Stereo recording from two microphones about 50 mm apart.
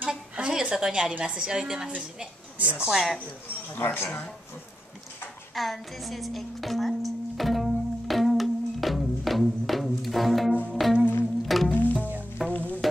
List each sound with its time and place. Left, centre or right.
0.1 s a sound: centre
1.2 s a woman's voice: centre
2.6 s a woman's voice: right
2.9 s a woman's voice: centre
3.7 s speech: left
5.5 s music: centre
11.7 s music: left